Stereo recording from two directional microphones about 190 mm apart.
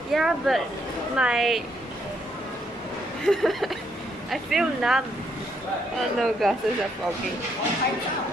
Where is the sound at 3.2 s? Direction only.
Centre (ahead or behind).